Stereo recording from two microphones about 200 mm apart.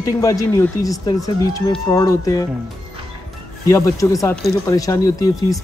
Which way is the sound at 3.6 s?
15° left (ahead or behind).